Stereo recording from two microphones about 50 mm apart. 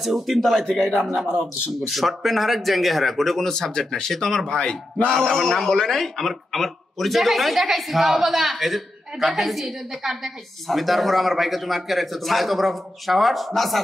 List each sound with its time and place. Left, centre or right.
0.0 s a woman's voice: centre
1.1 s a man's voice: centre
1.9 s a woman's voice: centre
5.1 s a woman's voice: centre